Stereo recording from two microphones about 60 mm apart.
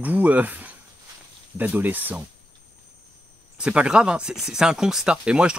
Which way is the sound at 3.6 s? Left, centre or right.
Centre.